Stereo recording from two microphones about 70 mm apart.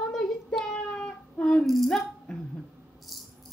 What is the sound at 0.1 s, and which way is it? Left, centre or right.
Child singing, centre.